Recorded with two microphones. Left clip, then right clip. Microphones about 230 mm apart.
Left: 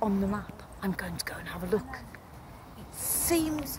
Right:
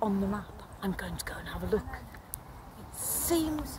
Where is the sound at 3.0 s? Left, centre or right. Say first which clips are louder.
Left 2 dB; centre.